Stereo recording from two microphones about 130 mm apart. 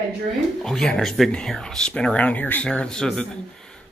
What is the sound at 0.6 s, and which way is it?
Speech, 5° left (ahead or behind).